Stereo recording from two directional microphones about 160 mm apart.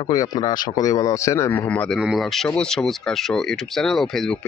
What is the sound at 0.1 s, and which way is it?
Speech, 25° left (ahead or behind).